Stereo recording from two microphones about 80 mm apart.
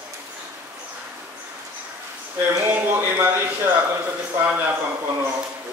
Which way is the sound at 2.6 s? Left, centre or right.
Right.